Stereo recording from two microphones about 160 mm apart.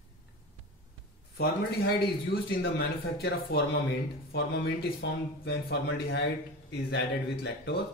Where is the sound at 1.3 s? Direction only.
70° left (ahead or behind).